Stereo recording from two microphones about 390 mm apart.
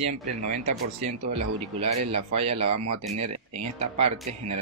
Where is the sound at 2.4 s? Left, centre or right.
Centre.